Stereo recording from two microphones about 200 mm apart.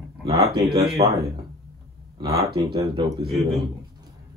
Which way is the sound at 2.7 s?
20° right (ahead or behind).